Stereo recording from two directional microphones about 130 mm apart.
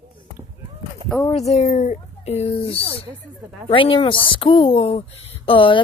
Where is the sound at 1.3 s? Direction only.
55° left (ahead or behind).